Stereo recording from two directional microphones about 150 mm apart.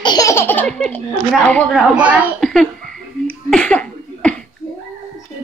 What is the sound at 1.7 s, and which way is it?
Speech, 5° right (ahead or behind).